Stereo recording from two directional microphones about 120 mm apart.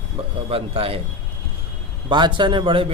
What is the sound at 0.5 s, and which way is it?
Speech, 50° right (ahead or behind).